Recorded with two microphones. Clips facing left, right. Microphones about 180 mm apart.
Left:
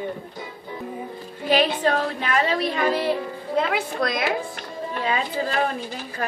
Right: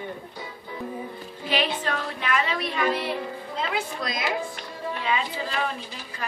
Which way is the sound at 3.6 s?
60° left (ahead or behind).